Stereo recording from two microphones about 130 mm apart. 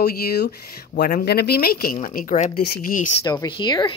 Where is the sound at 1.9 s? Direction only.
90° left.